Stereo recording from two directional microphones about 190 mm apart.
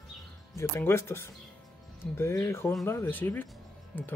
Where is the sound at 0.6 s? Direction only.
15° left (ahead or behind).